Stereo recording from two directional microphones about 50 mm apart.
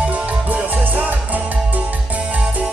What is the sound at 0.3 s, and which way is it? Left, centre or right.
Music, right.